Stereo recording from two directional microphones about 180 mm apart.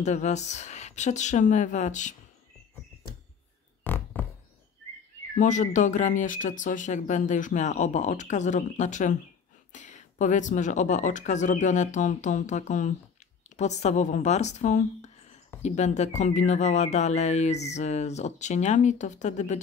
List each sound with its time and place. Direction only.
0.0 s speech: 40° left (ahead or behind)
3.8 s a sound: 10° left (ahead or behind)
5.3 s speech: 45° left (ahead or behind)